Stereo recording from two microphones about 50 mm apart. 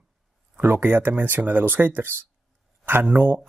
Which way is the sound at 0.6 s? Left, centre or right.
Right.